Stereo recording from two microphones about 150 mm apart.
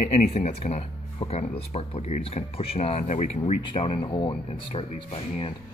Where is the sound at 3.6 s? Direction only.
35° left (ahead or behind).